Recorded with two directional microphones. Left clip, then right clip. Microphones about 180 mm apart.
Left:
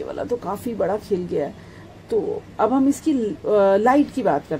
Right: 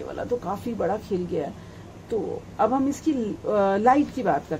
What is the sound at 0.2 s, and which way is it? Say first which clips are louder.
A woman's voice: left 1 dB; 45° left (ahead or behind).